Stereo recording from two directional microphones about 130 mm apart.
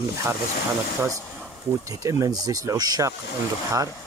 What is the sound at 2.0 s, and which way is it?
Speech, 25° right (ahead or behind).